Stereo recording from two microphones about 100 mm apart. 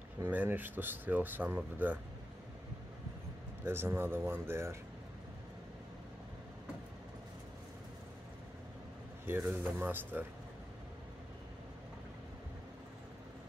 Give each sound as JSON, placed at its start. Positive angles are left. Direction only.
{"t": 0.2, "sound": "speech", "side_deg": -20}
{"t": 3.6, "sound": "speech", "side_deg": -25}
{"t": 9.2, "sound": "speech", "side_deg": -20}